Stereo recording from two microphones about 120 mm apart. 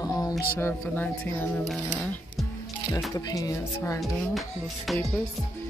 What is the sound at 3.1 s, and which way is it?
Speech, 30° left (ahead or behind).